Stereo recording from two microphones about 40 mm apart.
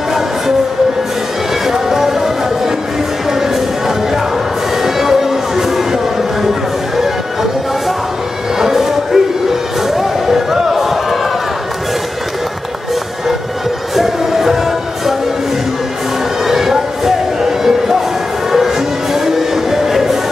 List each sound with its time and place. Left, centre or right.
1.7 s music: centre
4.8 s music: centre
8.5 s vehicle: centre
9.8 s a sound: centre
13.9 s music: centre
16.4 s music: centre
19.1 s music: centre